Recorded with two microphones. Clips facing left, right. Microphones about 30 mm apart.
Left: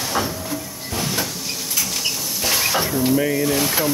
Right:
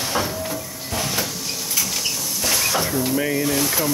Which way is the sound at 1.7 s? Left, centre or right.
Centre.